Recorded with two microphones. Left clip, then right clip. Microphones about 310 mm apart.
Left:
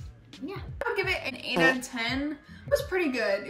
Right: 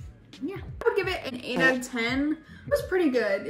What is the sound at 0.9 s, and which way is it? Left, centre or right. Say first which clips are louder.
Speech: right 1 dB; right.